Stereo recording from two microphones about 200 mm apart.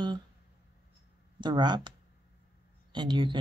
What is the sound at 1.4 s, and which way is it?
Speech, 20° right (ahead or behind).